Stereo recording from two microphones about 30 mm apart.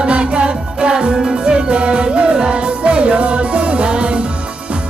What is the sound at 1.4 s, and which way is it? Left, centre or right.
Music, right.